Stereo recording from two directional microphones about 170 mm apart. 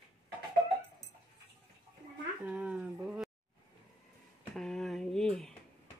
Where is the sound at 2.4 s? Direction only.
5° right (ahead or behind).